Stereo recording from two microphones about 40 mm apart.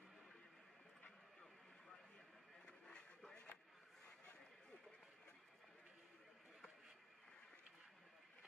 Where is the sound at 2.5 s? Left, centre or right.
Left.